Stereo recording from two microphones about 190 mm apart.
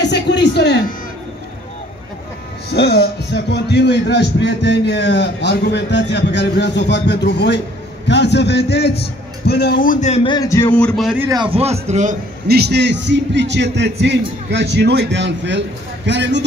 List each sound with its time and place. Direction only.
0.1 s a sound: 65° left (ahead or behind)
2.7 s a man's voice: 65° left (ahead or behind); by 10.2 s 40° left (ahead or behind)
10.2 s speech: 20° left (ahead or behind); by 11.2 s centre (ahead or behind)
11.2 s a man's voice: 25° right (ahead or behind)
12.4 s a man's voice: 60° right (ahead or behind)